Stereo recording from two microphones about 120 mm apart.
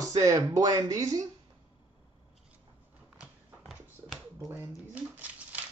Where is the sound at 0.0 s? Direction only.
30° right (ahead or behind).